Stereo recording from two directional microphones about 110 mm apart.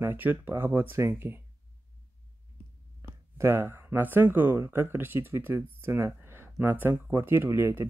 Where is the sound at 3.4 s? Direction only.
20° right (ahead or behind).